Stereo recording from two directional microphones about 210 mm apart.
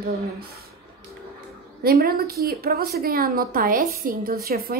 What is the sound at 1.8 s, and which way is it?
A woman's voice, 45° right (ahead or behind).